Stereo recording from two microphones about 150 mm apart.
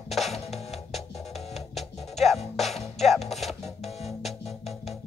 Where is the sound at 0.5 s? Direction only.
45° left (ahead or behind).